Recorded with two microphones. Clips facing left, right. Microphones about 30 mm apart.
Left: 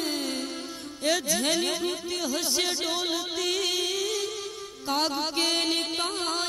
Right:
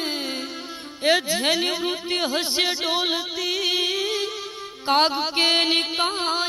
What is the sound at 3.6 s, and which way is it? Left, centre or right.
Music, right.